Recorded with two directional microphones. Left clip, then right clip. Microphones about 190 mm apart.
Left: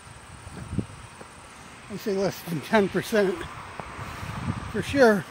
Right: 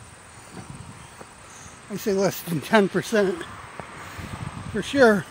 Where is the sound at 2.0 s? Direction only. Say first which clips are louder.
Right 4 dB; 35° right (ahead or behind).